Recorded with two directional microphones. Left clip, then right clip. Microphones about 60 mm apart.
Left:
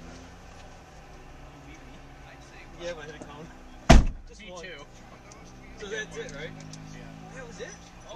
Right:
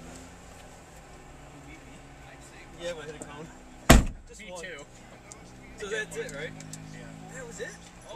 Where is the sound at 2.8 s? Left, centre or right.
Centre.